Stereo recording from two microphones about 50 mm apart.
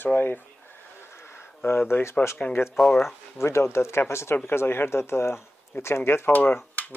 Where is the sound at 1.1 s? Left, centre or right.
Left.